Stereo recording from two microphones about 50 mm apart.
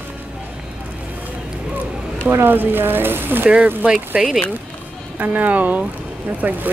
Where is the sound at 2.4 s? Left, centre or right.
Right.